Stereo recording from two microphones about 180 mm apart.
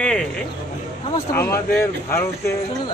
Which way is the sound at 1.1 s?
15° left (ahead or behind).